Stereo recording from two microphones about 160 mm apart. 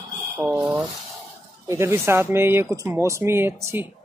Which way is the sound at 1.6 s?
15° right (ahead or behind).